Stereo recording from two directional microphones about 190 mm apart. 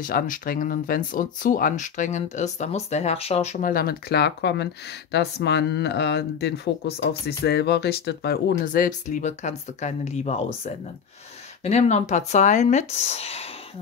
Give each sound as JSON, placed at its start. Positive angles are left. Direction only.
{"t": 0.0, "sound": "speech", "side_deg": 45}
{"t": 3.6, "sound": "speech", "side_deg": 50}